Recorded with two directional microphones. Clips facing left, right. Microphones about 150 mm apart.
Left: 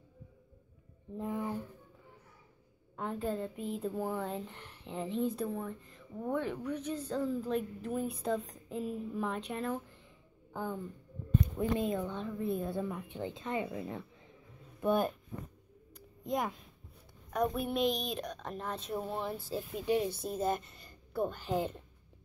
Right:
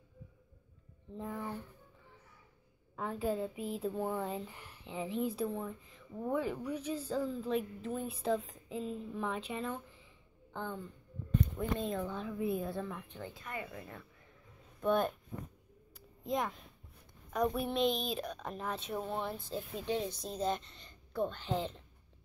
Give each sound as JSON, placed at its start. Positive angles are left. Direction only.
{"t": 1.3, "sound": "a sound", "side_deg": 15}
{"t": 3.0, "sound": "a woman's voice", "side_deg": -5}
{"t": 11.8, "sound": "a woman's voice", "side_deg": 0}
{"t": 13.1, "sound": "speech", "side_deg": 20}
{"t": 14.8, "sound": "a woman's voice", "side_deg": 5}
{"t": 16.3, "sound": "a woman's voice", "side_deg": 0}